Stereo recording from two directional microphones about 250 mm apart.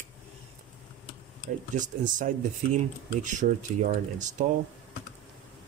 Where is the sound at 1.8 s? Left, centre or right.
Right.